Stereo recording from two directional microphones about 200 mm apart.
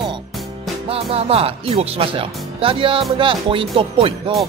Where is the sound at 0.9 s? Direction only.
30° right (ahead or behind).